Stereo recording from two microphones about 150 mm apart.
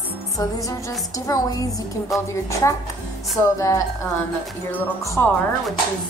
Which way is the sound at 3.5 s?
20° left (ahead or behind).